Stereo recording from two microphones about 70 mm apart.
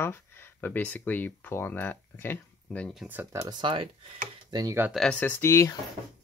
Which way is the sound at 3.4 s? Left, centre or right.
Right.